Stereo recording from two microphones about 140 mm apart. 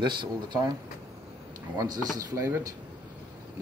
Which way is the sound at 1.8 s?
25° right (ahead or behind).